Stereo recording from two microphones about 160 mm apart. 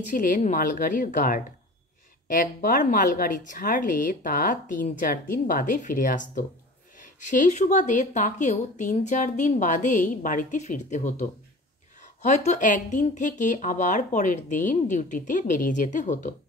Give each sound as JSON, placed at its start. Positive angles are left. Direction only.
{"t": 0.1, "sound": "a woman's voice", "side_deg": 55}